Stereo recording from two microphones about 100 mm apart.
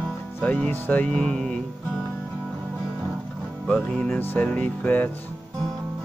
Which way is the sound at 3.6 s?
10° left (ahead or behind).